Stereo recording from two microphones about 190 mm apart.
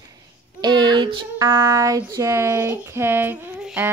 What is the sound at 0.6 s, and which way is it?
Child singing, 25° right (ahead or behind).